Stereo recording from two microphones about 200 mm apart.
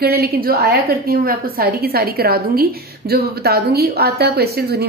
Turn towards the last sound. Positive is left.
turn(degrees=-55)  # may be behind; listen again after turning